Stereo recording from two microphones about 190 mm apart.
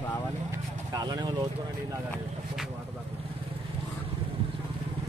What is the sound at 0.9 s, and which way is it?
Vehicle, 20° right (ahead or behind).